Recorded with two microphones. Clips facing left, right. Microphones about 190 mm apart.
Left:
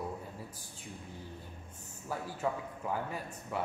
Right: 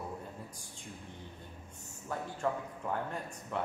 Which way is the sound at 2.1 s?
5° left (ahead or behind).